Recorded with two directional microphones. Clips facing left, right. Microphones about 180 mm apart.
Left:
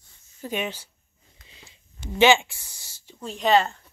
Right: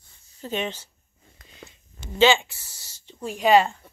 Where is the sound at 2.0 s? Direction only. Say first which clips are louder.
Left 1 dB; 15° left (ahead or behind).